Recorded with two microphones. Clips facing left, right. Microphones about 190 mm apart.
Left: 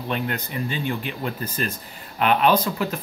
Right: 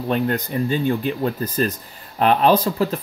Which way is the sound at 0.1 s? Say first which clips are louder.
Right 6 dB; 40° right (ahead or behind).